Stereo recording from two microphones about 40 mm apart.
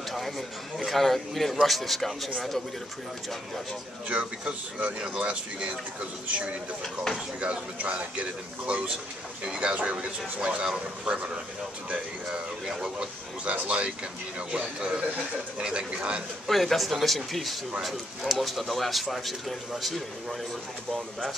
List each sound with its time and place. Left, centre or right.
0.7 s a man's voice: centre
4.1 s a man's voice: right
12.3 s speech: centre
13.5 s a man's voice: right
16.4 s a man's voice: centre